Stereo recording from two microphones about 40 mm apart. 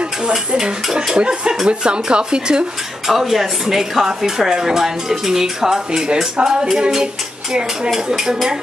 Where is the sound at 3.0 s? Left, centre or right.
Centre.